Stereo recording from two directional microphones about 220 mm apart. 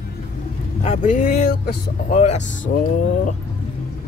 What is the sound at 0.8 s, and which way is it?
Speech, 30° left (ahead or behind).